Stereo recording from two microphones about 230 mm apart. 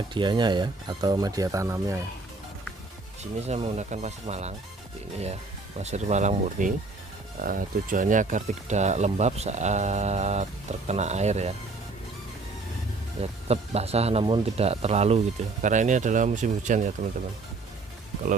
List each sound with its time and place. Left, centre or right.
0.1 s speech: centre
3.3 s speech: right
13.2 s speech: right